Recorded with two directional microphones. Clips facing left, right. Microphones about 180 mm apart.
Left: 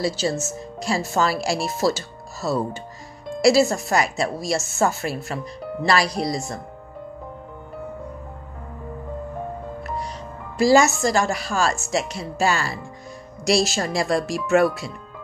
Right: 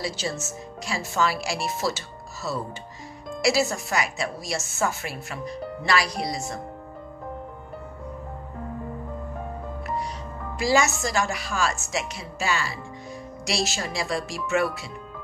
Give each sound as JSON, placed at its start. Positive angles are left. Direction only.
{"t": 0.0, "sound": "speech", "side_deg": 40}
{"t": 10.6, "sound": "speech", "side_deg": 35}